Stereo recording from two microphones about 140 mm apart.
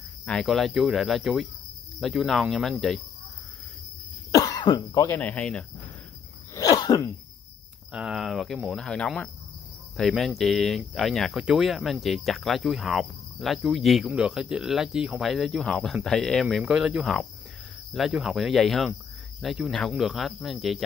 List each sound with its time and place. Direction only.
0.2 s speech: 5° left (ahead or behind)
4.3 s cough: 25° left (ahead or behind)
5.0 s cricket: 10° left (ahead or behind)
6.5 s sneeze: 25° left (ahead or behind)
7.9 s speech: 5° right (ahead or behind)